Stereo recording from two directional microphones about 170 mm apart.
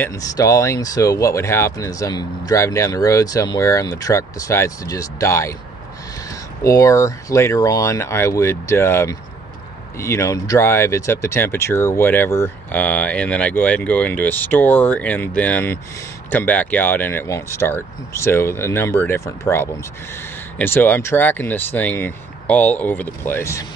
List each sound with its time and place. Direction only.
0.0 s speech: 20° left (ahead or behind)
6.6 s speech: 20° left (ahead or behind)